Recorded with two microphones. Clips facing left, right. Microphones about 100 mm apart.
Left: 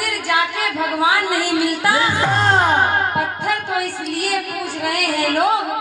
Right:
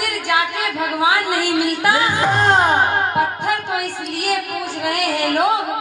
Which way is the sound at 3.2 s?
20° right (ahead or behind).